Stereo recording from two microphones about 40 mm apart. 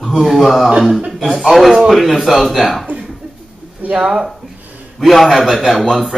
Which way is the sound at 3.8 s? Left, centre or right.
Right.